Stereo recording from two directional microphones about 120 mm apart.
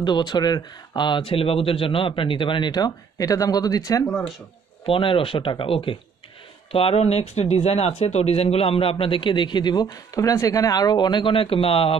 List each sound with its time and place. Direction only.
0.0 s speech: 40° left (ahead or behind)
4.8 s speech: 50° left (ahead or behind)